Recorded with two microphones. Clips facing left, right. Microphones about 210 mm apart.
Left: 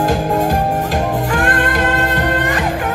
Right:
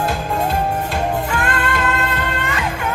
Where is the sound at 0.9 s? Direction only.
45° left (ahead or behind).